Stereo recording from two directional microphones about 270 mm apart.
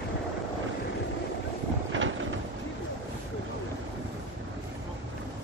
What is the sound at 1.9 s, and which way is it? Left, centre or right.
Vehicle, right.